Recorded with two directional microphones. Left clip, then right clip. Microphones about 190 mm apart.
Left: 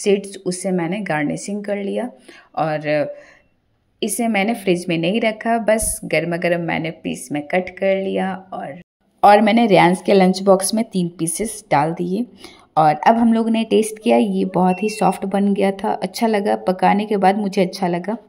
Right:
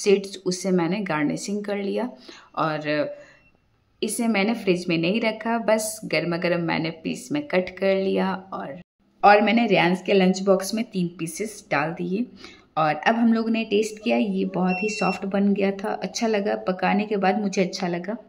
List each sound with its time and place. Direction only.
0.0 s speech: 10° left (ahead or behind)
9.2 s speech: 25° left (ahead or behind)